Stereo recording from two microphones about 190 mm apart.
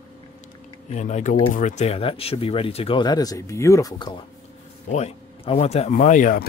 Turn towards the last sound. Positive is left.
turn(degrees=45)  # may be behind; listen again after turning